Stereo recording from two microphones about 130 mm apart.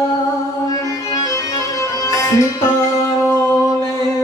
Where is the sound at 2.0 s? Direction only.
25° left (ahead or behind).